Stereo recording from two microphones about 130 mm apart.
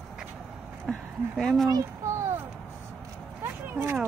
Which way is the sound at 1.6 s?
25° right (ahead or behind).